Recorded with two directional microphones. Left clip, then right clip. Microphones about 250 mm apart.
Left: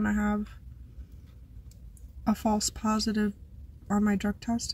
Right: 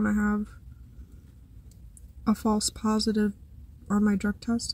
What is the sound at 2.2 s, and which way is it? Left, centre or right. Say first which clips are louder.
Speech: right 1 dB; centre.